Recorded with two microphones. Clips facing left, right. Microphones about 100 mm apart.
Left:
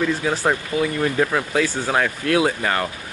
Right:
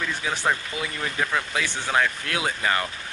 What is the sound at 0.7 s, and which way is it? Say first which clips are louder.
Speech: left 10 dB; 45° left (ahead or behind).